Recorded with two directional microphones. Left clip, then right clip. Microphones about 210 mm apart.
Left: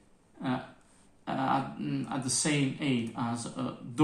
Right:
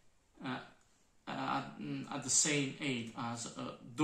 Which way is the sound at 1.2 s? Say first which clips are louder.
Left 8 dB; 20° left (ahead or behind).